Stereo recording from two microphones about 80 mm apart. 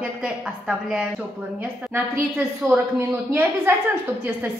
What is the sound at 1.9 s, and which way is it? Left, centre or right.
A woman's voice, right.